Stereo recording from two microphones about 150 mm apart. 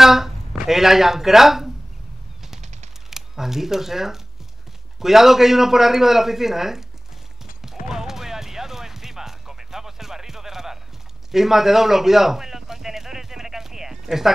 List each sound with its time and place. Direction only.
0.0 s speech: centre (ahead or behind)
3.1 s a man's voice: 5° right (ahead or behind)
7.9 s music: 5° right (ahead or behind)
11.3 s a sound: centre (ahead or behind)